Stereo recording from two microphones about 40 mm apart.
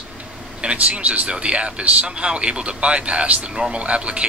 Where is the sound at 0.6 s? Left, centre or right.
Right.